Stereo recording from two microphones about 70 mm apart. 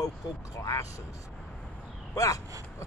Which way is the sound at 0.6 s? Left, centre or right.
Left.